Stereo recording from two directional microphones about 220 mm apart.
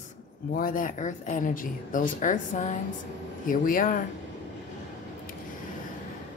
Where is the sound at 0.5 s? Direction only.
40° left (ahead or behind).